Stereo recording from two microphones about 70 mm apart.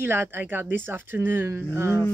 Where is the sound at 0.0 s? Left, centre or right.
Right.